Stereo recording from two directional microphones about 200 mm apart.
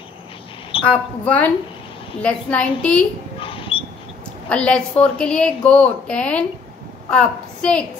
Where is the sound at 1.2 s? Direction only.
5° left (ahead or behind).